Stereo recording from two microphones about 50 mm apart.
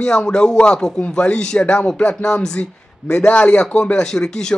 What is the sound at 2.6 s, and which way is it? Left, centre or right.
Speech, left.